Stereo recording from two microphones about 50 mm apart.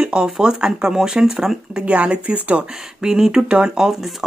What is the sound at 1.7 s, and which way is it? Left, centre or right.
Speech, right.